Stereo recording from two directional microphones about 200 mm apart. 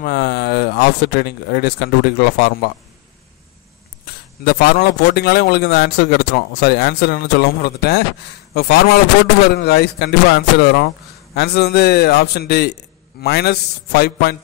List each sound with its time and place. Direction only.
0.0 s speech: 50° left (ahead or behind)
4.5 s speech: 50° left (ahead or behind)